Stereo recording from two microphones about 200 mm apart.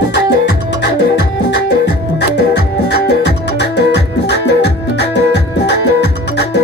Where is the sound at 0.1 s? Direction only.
60° left (ahead or behind).